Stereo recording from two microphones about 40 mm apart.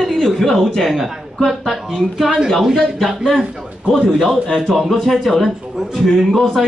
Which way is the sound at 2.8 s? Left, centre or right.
Centre.